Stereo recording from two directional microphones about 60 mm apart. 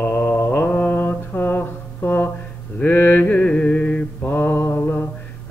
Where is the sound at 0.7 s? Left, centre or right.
Left.